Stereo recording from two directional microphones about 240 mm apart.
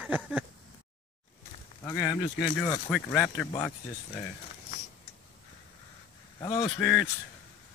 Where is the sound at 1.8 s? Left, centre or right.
Centre.